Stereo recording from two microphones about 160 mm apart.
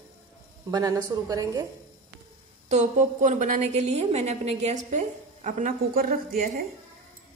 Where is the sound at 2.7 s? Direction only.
50° right (ahead or behind); by 6.5 s 65° right (ahead or behind).